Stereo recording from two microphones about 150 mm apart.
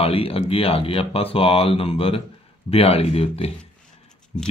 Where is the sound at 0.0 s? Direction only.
40° left (ahead or behind).